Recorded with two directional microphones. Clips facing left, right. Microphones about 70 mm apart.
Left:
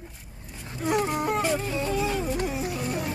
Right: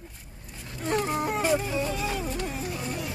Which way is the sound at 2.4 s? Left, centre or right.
Centre.